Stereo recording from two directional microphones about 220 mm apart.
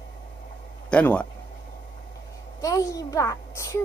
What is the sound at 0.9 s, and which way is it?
Speech, 5° left (ahead or behind).